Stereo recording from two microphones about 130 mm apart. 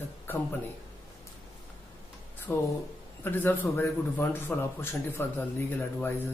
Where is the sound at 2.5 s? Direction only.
15° left (ahead or behind).